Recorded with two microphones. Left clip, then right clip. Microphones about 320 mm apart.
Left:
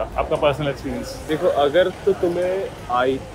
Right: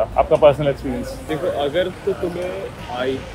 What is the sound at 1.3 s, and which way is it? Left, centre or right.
Speech, centre.